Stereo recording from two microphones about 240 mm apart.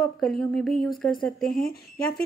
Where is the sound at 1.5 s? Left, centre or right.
Left.